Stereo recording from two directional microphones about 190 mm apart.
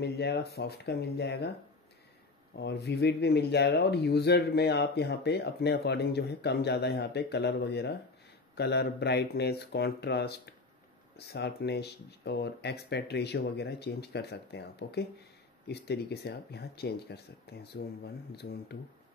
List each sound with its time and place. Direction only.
0.0 s speech: 60° left (ahead or behind)
2.5 s speech: 60° left (ahead or behind)